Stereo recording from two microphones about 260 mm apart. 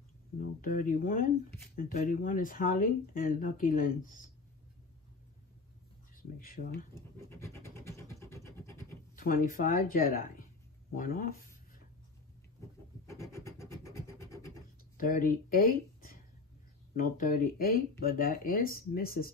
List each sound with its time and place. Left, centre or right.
0.4 s speech: left
6.4 s speech: left
7.0 s vehicle: centre
9.1 s speech: left
13.1 s rub: centre
15.0 s speech: left